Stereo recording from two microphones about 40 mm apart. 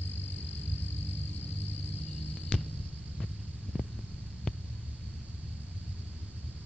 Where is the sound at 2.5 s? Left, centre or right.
Left.